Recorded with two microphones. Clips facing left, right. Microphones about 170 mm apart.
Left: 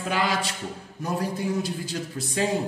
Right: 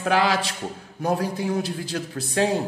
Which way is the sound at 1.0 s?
65° right (ahead or behind).